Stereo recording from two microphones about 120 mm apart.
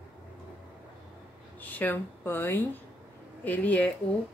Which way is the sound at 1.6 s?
15° left (ahead or behind).